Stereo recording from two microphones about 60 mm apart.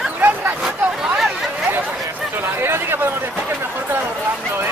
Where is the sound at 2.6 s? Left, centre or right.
Right.